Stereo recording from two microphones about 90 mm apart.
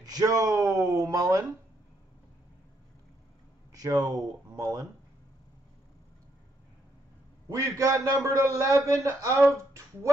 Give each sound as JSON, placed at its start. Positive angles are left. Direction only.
{"t": 0.0, "sound": "speech", "side_deg": -45}
{"t": 3.7, "sound": "speech", "side_deg": -45}
{"t": 7.4, "sound": "a man's voice", "side_deg": -35}